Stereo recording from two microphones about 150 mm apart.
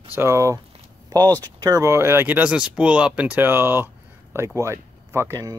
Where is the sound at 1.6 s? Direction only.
20° right (ahead or behind).